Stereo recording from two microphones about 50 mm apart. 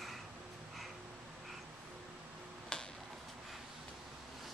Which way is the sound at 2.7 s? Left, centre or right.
Centre.